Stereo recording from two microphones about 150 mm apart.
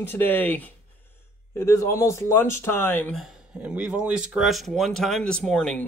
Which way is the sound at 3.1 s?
5° right (ahead or behind).